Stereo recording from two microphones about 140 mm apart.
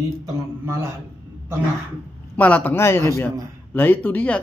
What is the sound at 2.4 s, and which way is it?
Music, 10° left (ahead or behind).